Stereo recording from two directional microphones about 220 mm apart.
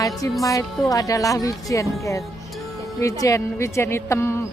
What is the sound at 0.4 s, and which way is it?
Speech, 15° left (ahead or behind).